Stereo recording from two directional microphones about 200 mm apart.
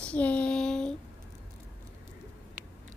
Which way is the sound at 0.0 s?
5° left (ahead or behind).